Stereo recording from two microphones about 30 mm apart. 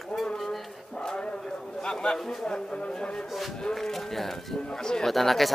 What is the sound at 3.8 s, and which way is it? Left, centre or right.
Speech, centre.